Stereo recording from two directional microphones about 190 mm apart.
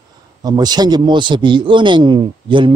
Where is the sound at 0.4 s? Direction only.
20° right (ahead or behind).